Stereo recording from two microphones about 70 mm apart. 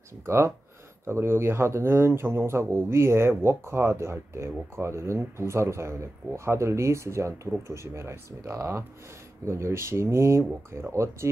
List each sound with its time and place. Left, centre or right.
0.2 s speech: right